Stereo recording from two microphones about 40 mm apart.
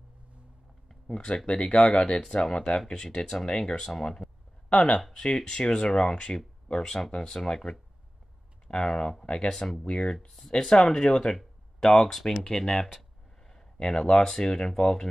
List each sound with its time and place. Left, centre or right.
1.0 s speech: centre
4.2 s a sound: left
5.1 s speech: left
8.6 s speech: left
13.4 s a sound: centre
13.7 s speech: centre